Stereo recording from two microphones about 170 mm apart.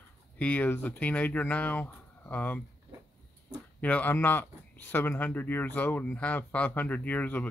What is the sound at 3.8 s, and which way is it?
Speech, 10° left (ahead or behind).